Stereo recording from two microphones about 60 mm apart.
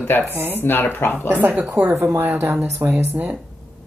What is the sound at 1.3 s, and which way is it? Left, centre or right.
Speech, right.